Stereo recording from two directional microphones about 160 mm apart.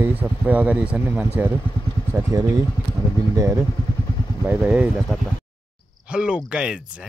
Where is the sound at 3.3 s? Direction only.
15° right (ahead or behind).